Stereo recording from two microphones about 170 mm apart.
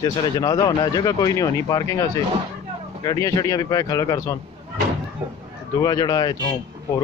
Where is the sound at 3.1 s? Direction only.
20° left (ahead or behind).